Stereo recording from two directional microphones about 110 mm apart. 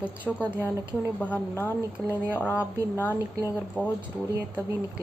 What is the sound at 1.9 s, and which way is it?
Speech, 15° right (ahead or behind).